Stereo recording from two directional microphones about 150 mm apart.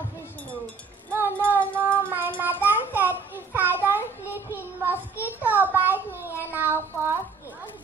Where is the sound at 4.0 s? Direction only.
15° left (ahead or behind).